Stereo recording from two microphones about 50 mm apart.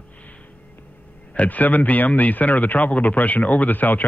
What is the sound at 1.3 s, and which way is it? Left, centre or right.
Speech, left.